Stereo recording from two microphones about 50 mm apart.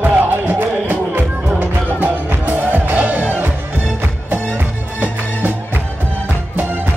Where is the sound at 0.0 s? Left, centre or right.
Right.